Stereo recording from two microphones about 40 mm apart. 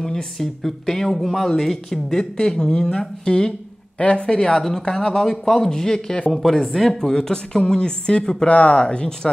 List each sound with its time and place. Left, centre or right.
0.0 s speech: centre
8.5 s speech: left